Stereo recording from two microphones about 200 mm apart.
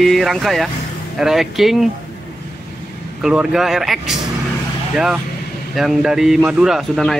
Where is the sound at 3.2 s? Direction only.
5° right (ahead or behind).